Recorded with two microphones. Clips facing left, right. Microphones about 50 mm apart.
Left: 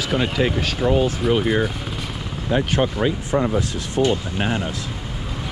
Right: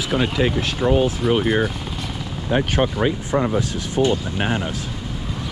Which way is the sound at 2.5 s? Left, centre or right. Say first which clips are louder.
Even; right.